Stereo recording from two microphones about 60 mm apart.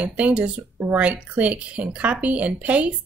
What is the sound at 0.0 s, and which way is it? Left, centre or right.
Speech, right.